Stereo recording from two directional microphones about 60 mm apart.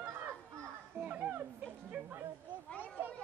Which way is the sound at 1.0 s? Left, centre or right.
Right.